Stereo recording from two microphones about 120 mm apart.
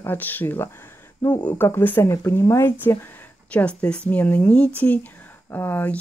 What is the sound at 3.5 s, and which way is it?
Speech, 10° left (ahead or behind).